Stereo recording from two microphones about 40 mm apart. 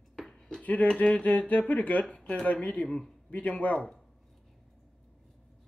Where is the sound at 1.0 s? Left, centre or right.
Left.